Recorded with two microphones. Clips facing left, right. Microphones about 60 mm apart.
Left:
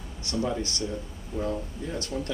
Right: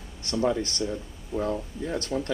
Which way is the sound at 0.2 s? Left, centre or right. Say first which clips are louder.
Right 3 dB; right.